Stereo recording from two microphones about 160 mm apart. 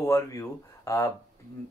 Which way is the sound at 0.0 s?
15° left (ahead or behind).